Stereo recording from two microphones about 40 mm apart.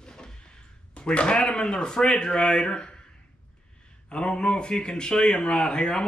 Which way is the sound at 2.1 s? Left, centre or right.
Centre.